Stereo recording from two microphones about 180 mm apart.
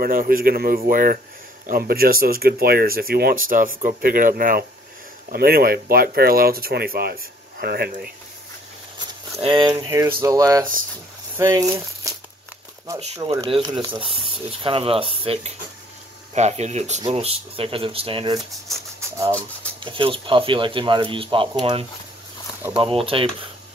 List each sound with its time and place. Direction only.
0.0 s a man's voice: 50° right (ahead or behind)
9.0 s speech: 25° right (ahead or behind)
18.9 s a sound: 15° right (ahead or behind)
19.8 s speech: 30° right (ahead or behind)